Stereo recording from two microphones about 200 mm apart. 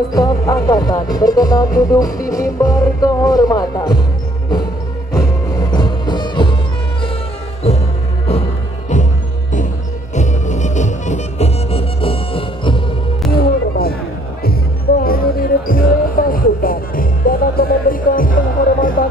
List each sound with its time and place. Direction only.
0.1 s speech: 20° left (ahead or behind)
5.5 s music: 20° left (ahead or behind)
8.3 s music: 35° left (ahead or behind)
10.1 s music: 35° left (ahead or behind)
13.3 s music: 50° left (ahead or behind)
15.0 s music: 45° left (ahead or behind)